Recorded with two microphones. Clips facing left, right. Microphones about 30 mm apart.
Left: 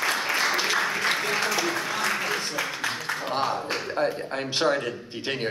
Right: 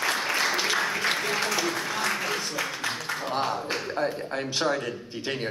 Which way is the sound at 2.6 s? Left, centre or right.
Centre.